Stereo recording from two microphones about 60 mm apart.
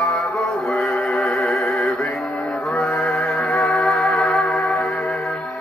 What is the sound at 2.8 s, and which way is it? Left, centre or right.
Music, centre.